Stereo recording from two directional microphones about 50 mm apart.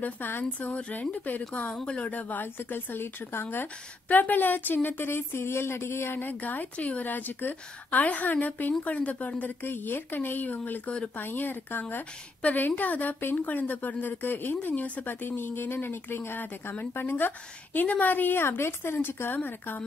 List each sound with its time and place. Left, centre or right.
0.0 s a woman's voice: left
6.2 s a woman's voice: left
9.4 s a woman's voice: left
15.2 s speech: left
17.7 s speech: left
19.3 s a woman's voice: left